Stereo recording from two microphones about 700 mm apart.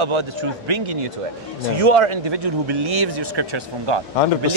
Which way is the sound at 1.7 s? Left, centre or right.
Right.